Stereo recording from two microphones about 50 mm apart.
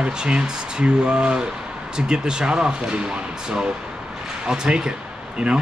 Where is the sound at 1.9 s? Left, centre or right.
Centre.